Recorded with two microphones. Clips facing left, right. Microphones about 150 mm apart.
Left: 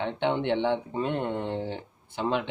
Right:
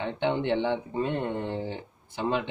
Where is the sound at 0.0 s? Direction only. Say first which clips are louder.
Even; 5° right (ahead or behind).